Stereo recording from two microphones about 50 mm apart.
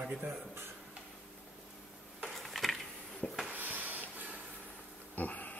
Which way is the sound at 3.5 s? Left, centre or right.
Right.